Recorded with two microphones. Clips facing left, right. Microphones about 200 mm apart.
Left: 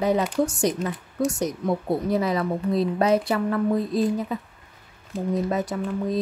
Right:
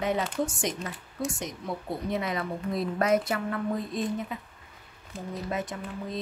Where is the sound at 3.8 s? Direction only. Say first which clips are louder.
Left 8 dB; centre (ahead or behind).